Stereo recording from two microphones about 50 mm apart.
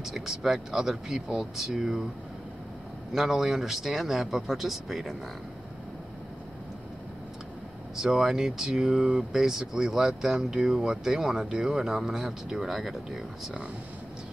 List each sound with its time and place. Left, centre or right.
0.0 s speech: centre
3.1 s speech: centre
7.9 s speech: centre